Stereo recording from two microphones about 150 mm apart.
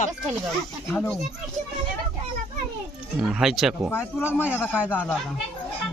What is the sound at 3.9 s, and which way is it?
Speech, 15° left (ahead or behind).